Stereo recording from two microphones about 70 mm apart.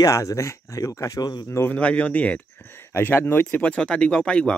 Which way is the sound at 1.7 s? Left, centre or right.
Centre.